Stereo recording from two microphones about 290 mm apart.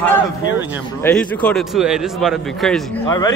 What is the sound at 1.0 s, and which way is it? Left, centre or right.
Speech, centre.